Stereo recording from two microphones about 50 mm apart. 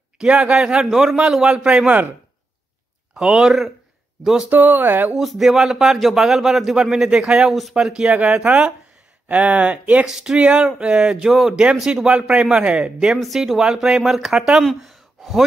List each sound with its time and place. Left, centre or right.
0.2 s speech: centre
3.2 s speech: centre
4.5 s speech: right
5.1 s a man's voice: centre
7.7 s speech: centre
10.0 s speech: centre
13.0 s speech: centre
14.6 s speech: centre